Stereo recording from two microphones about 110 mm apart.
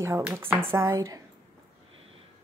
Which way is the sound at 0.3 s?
20° right (ahead or behind).